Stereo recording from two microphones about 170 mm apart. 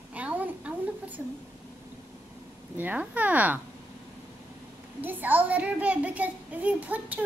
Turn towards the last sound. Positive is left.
turn(degrees=-10)  # may be behind; listen again after turning